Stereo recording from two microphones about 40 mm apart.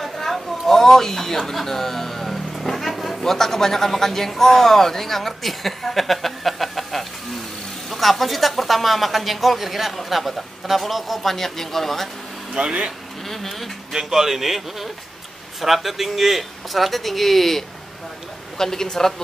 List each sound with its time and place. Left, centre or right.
0.0 s speech: centre
12.5 s speech: right
13.3 s speech: centre
13.9 s a man's voice: centre